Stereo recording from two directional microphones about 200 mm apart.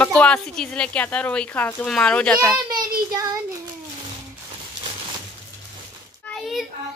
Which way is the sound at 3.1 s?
15° right (ahead or behind).